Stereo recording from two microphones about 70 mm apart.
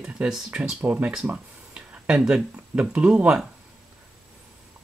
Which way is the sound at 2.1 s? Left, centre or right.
Centre.